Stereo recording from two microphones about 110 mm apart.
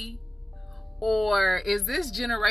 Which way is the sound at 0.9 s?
Centre (ahead or behind).